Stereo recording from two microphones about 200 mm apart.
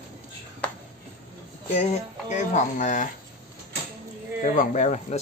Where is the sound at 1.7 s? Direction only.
35° left (ahead or behind).